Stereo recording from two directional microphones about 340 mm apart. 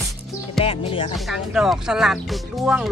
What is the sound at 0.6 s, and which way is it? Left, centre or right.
Music, centre.